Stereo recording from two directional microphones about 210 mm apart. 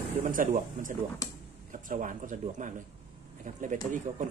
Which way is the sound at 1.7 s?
40° right (ahead or behind).